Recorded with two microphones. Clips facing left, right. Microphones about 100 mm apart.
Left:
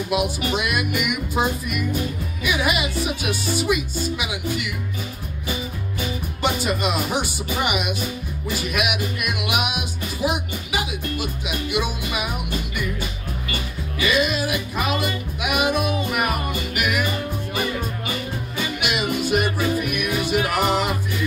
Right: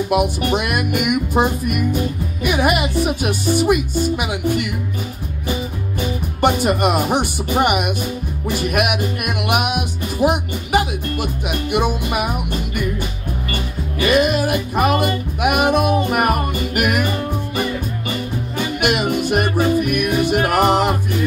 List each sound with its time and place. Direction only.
0.1 s music: 55° right (ahead or behind)
6.4 s speech: 55° right (ahead or behind)
8.5 s music: 50° right (ahead or behind)
13.5 s music: 50° right (ahead or behind)
18.6 s music: 55° right (ahead or behind)